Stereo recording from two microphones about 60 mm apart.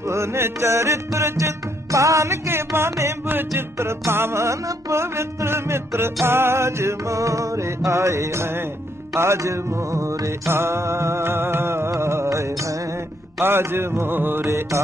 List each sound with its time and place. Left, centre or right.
0.1 s music: right
13.4 s music: right